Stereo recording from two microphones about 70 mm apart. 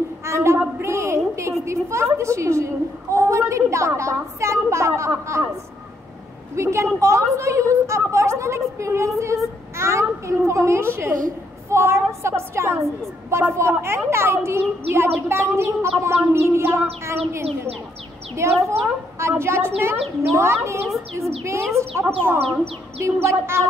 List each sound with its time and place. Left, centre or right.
0.2 s a sound: right
1.6 s a woman's voice: right
6.5 s a woman's voice: right
18.7 s a child's voice: right
20.8 s speech: centre
21.5 s a child's voice: right
23.0 s a child's voice: right